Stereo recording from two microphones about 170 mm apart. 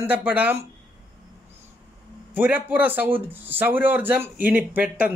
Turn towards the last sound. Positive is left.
turn(degrees=-10)  # may be behind; listen again after turning